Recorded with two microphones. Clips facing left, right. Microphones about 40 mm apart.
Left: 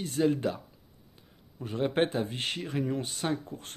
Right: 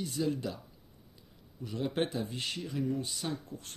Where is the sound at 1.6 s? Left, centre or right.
Left.